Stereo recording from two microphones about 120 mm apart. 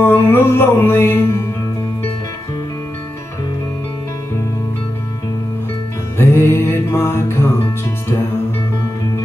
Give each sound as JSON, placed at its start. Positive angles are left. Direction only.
{"t": 0.0, "sound": "music", "side_deg": 15}
{"t": 6.1, "sound": "music", "side_deg": 20}